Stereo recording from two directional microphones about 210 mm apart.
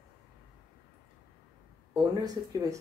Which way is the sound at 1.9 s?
15° right (ahead or behind).